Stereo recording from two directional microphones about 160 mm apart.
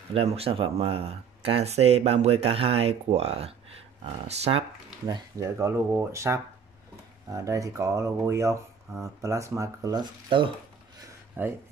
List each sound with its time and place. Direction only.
0.1 s speech: 40° right (ahead or behind)
5.0 s speech: 20° right (ahead or behind)
11.4 s speech: 15° right (ahead or behind)